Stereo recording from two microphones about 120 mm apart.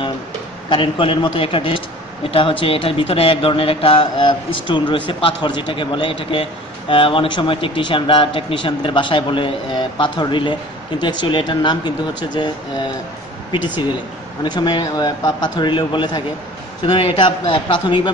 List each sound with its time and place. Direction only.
0.7 s speech: 45° left (ahead or behind)